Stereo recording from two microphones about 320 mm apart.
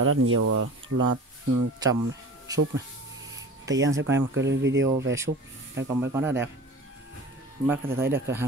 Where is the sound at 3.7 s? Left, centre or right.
Right.